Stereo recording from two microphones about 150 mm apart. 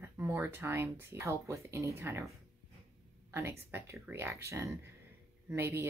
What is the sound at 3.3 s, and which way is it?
A woman's voice, 15° right (ahead or behind).